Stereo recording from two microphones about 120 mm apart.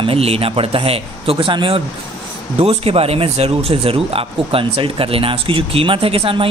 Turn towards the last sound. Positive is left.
turn(degrees=-50)  # may be behind; listen again after turning